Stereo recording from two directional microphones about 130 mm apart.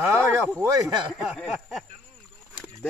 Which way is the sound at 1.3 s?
Centre (ahead or behind).